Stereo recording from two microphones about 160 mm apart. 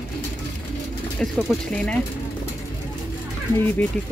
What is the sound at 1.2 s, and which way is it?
Speech, centre (ahead or behind).